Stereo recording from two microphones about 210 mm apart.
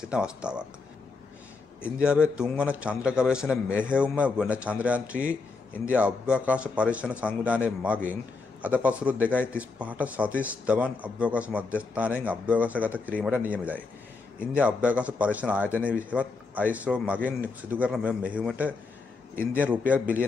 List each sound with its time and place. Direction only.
0.1 s speech: 5° right (ahead or behind)
2.0 s speech: 5° right (ahead or behind)
3.6 s speech: 10° left (ahead or behind)
3.9 s speech: 5° right (ahead or behind)
15.7 s speech: 10° left (ahead or behind)
16.1 s speech: 5° right (ahead or behind)